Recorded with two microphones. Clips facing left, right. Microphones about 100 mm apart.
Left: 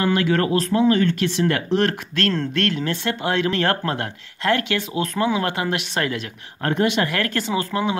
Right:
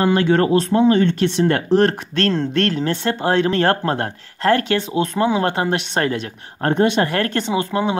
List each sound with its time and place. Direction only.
0.0 s speech: 30° right (ahead or behind)